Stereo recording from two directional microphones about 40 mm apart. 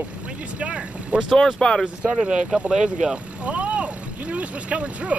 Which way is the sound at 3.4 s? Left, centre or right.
Right.